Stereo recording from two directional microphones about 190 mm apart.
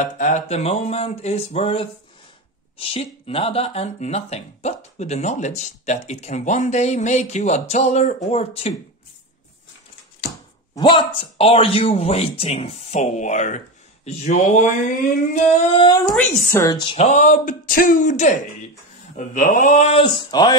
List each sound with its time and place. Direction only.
0.0 s speech: 40° left (ahead or behind)
10.7 s speech: 25° left (ahead or behind)
16.2 s speech: 10° left (ahead or behind)